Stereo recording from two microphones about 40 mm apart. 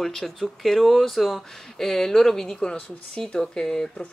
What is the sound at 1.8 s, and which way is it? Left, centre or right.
Speech, centre.